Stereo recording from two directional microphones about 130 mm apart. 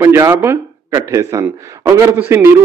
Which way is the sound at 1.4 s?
15° right (ahead or behind).